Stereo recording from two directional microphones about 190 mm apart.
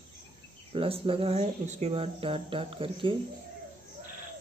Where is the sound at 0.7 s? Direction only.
30° right (ahead or behind).